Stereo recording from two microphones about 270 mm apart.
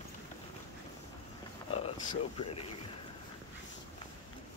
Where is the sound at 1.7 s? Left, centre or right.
Left.